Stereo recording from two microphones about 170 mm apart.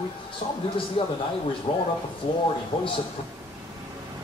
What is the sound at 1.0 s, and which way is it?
A man's voice, 30° left (ahead or behind).